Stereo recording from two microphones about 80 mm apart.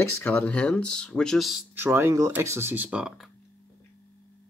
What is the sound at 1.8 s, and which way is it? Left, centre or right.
Speech, right.